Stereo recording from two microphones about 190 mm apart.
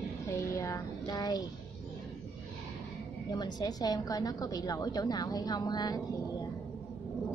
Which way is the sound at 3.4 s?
20° left (ahead or behind).